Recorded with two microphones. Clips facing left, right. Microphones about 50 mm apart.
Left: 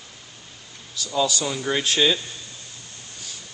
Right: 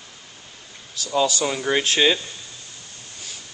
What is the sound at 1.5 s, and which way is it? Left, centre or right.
Speech, right.